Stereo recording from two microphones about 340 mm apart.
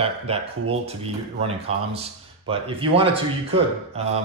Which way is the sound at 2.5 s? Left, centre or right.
Centre.